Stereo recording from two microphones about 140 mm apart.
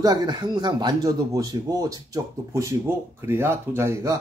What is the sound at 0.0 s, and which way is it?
Speech, 30° right (ahead or behind).